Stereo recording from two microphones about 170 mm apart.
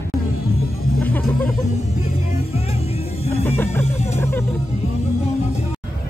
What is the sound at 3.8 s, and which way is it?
Music, 40° left (ahead or behind).